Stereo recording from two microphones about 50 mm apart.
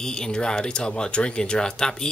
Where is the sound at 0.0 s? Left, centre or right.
Centre.